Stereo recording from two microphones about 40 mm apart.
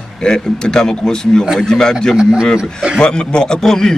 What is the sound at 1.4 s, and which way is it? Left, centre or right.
Speech, centre.